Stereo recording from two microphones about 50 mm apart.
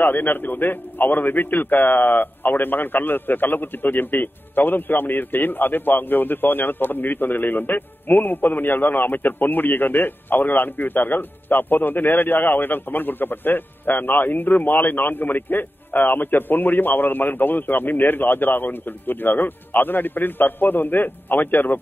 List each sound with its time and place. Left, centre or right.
0.0 s a man's voice: left